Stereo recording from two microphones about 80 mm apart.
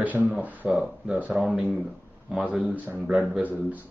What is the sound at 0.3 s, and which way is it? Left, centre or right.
Speech, centre.